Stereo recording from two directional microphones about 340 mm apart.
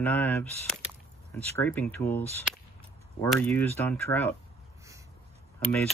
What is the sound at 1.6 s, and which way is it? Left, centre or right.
Speech, centre.